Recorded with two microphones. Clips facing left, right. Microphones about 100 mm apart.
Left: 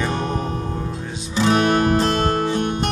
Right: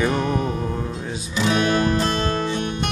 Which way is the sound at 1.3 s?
40° left (ahead or behind).